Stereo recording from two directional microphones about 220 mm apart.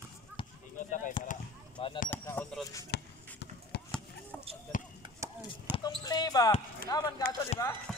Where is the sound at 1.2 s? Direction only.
35° left (ahead or behind).